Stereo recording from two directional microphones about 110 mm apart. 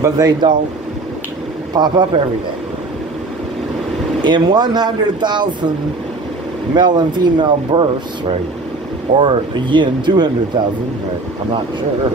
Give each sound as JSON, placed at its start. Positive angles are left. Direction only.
{"t": 0.0, "sound": "speech", "side_deg": -35}
{"t": 1.7, "sound": "speech", "side_deg": -40}
{"t": 4.2, "sound": "speech", "side_deg": -40}
{"t": 6.7, "sound": "speech", "side_deg": -40}